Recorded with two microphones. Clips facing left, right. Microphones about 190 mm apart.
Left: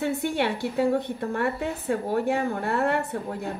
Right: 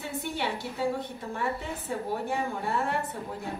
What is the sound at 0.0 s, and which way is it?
A woman's voice, 65° left (ahead or behind).